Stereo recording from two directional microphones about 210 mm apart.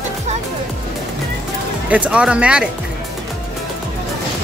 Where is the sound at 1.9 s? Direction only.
5° right (ahead or behind).